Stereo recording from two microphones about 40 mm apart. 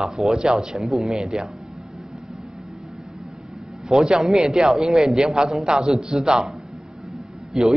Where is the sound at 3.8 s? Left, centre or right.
Centre.